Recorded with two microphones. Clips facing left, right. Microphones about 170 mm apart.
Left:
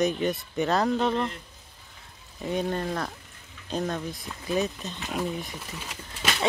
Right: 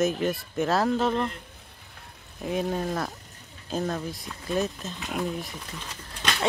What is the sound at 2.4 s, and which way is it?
Speech, centre (ahead or behind).